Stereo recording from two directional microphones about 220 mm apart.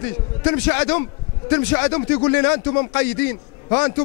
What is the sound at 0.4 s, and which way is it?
A man's voice, 15° left (ahead or behind).